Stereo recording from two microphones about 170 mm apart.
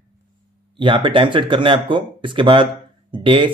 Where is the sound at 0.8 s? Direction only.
30° right (ahead or behind).